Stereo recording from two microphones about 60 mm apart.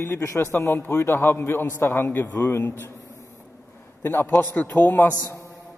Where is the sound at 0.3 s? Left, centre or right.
Left.